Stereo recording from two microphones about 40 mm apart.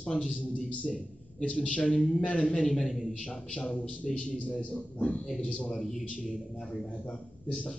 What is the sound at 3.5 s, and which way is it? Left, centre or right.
A man's voice, centre.